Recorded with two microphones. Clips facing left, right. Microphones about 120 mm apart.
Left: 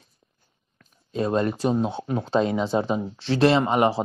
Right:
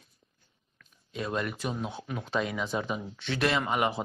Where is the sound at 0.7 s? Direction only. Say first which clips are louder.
Left 10 dB; 35° left (ahead or behind).